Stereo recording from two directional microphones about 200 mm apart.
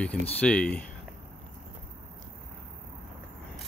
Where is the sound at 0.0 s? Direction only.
5° left (ahead or behind).